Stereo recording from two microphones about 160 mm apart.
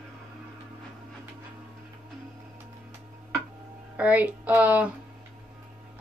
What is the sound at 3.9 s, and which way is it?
Speech, 10° right (ahead or behind).